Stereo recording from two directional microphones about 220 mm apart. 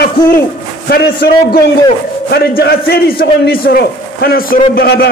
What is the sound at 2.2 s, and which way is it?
A man's voice, 45° left (ahead or behind).